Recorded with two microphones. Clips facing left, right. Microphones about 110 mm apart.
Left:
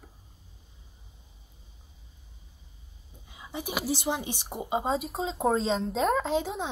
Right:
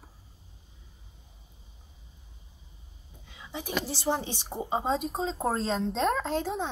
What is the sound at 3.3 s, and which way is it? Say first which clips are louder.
Speech: even; 15° left (ahead or behind).